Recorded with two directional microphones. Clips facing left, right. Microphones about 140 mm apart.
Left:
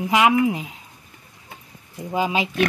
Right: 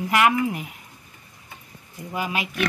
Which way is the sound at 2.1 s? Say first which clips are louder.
Left 6 dB; 25° left (ahead or behind).